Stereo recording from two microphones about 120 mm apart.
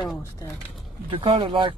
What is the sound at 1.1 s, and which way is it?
Speech, 50° right (ahead or behind).